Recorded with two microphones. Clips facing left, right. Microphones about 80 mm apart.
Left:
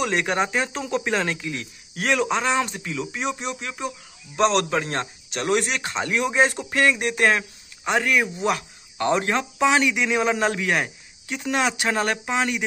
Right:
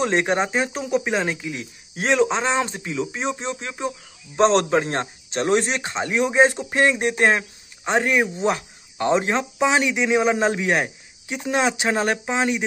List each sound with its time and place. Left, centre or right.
0.0 s speech: right